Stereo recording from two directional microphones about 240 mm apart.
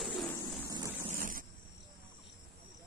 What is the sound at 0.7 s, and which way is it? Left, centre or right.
Vehicle, centre.